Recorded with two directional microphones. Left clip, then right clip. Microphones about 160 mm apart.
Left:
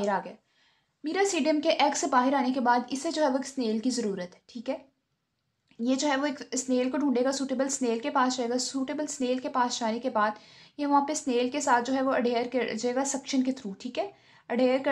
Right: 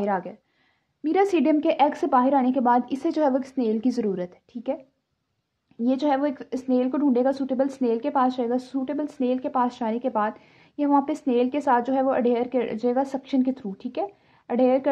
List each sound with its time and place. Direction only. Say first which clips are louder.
0.0 s a woman's voice: right 3 dB; 45° right (ahead or behind)
5.9 s speech: right 4 dB; 35° right (ahead or behind)